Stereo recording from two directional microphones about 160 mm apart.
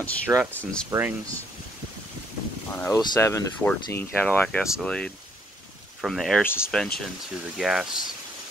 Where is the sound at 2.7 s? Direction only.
15° left (ahead or behind); by 8.0 s 5° right (ahead or behind).